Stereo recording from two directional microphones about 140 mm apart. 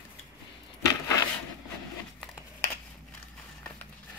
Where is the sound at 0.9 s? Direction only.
25° left (ahead or behind).